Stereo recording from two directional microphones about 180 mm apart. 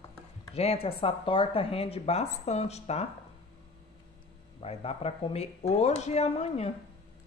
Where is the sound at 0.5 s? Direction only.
35° left (ahead or behind).